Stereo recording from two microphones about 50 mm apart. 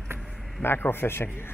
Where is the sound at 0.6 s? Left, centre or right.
Left.